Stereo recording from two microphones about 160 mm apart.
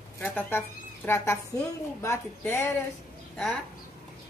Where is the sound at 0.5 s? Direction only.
15° left (ahead or behind).